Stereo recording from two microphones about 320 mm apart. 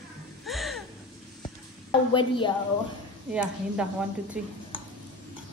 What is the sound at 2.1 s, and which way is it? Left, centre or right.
Speech, centre.